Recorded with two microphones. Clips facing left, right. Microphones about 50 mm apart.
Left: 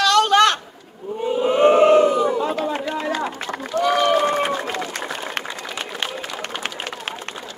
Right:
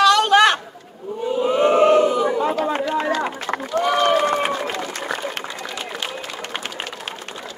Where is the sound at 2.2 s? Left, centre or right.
Right.